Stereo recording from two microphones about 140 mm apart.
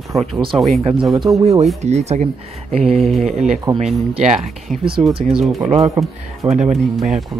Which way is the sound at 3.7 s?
30° right (ahead or behind).